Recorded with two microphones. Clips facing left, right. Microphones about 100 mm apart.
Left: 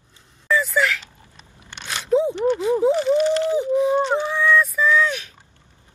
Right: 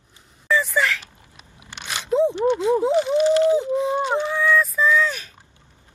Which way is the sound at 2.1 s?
Centre (ahead or behind).